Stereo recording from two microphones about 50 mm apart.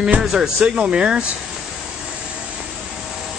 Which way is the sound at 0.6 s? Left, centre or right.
Centre.